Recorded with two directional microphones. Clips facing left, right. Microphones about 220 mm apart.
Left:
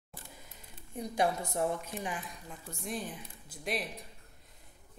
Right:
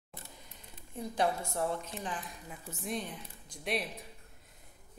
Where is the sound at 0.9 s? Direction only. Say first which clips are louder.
Left 1 dB; 15° left (ahead or behind).